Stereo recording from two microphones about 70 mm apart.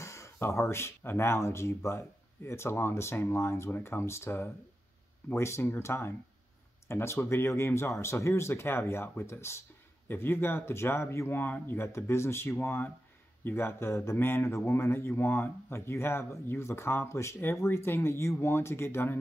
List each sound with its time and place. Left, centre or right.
0.0 s a man's voice: left